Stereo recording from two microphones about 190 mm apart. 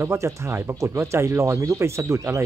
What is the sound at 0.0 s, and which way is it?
Speech, 15° right (ahead or behind).